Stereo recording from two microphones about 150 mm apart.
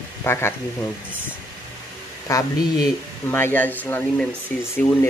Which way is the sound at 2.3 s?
20° left (ahead or behind).